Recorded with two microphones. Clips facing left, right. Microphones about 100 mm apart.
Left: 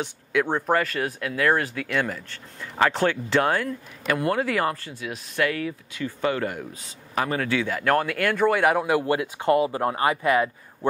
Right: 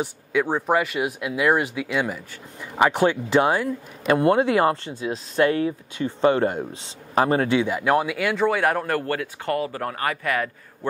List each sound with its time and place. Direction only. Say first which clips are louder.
0.0 s speech: right 1 dB; 5° right (ahead or behind)
4.0 s speech: right 6 dB; 25° right (ahead or behind); by 10.9 s 20° left (ahead or behind)